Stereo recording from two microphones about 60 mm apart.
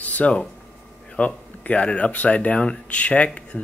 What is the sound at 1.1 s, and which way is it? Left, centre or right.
Speech, left.